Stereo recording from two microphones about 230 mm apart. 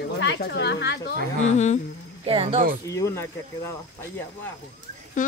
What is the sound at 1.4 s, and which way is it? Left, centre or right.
Speech, left.